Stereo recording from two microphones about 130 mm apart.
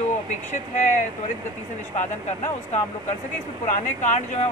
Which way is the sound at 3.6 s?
65° left (ahead or behind).